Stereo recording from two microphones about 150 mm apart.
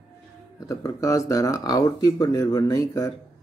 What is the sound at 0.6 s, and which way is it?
Speech, 20° left (ahead or behind).